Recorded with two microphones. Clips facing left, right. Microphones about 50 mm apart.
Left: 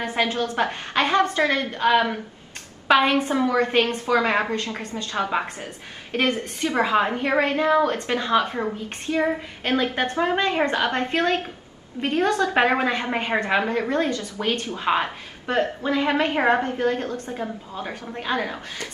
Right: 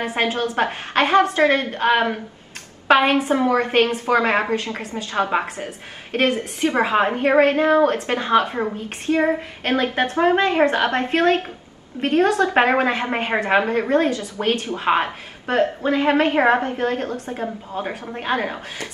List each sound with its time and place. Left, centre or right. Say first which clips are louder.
0.2 s a woman's voice: right 2 dB; right
0.7 s a woman's voice: right 3 dB; centre